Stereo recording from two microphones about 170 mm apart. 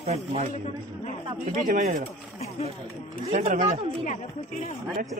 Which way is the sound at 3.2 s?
40° right (ahead or behind).